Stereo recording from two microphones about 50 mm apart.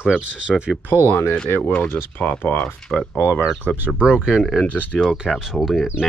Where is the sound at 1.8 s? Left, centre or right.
Left.